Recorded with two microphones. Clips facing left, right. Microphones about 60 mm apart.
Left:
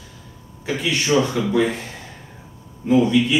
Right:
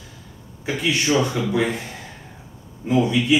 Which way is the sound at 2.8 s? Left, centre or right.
Centre.